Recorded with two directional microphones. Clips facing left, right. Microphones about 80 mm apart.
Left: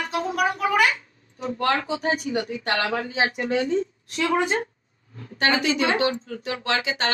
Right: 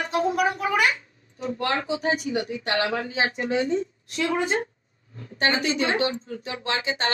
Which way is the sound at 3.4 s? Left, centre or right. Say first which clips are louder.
Left 1 dB; centre.